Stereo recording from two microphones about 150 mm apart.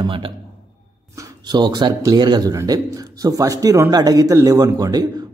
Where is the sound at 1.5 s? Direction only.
30° right (ahead or behind).